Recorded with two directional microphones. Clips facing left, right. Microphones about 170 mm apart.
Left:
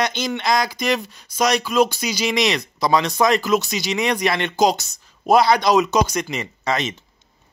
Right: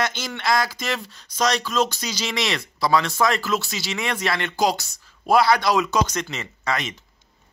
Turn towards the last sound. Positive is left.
turn(degrees=25)  # may be behind; listen again after turning